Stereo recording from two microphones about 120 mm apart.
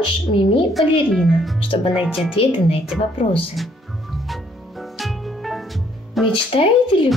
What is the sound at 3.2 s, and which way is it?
Speech, 50° left (ahead or behind).